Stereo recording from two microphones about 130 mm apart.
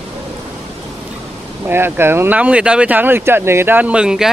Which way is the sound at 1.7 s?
15° right (ahead or behind).